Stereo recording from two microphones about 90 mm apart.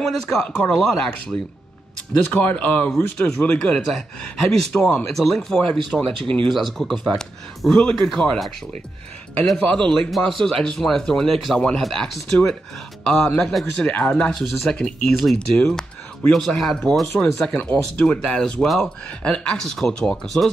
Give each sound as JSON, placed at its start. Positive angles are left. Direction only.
{"t": 0.0, "sound": "speech", "side_deg": 5}
{"t": 2.3, "sound": "speech", "side_deg": 15}
{"t": 6.5, "sound": "speech", "side_deg": 0}
{"t": 9.5, "sound": "speech", "side_deg": 10}